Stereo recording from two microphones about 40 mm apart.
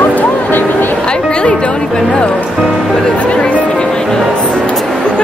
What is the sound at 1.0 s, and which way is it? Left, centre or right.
A woman's voice, left.